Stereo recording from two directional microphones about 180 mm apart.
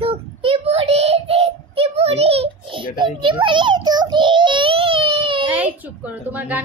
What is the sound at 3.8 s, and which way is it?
Child singing, 25° right (ahead or behind).